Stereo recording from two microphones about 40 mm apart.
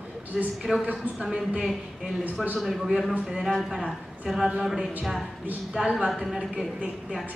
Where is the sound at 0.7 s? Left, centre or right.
Centre.